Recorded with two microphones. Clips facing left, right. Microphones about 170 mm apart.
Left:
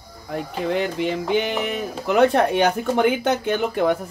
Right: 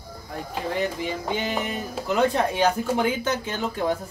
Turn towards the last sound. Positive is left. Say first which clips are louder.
# left 6 dB
turn(degrees=65)  # may be behind; listen again after turning